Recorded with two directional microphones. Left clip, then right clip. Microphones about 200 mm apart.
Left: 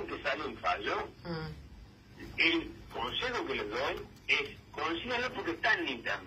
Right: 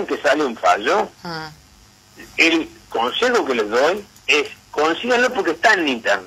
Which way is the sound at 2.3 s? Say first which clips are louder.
Right 13 dB; 50° right (ahead or behind).